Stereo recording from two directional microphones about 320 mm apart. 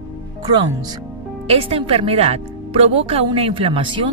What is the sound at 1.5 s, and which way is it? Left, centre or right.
Speech, centre.